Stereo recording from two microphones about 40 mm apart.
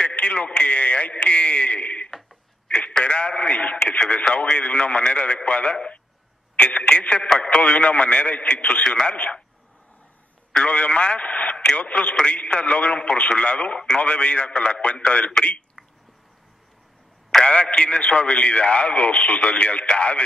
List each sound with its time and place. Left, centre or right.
0.0 s a man's voice: left
8.8 s speech: centre
9.1 s a man's voice: left
10.6 s a man's voice: left
17.5 s a man's voice: left